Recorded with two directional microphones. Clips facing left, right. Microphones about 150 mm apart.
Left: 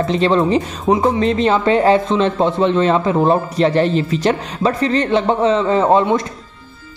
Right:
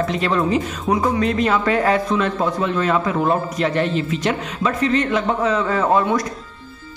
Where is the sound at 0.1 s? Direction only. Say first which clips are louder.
Left 5 dB; 25° left (ahead or behind).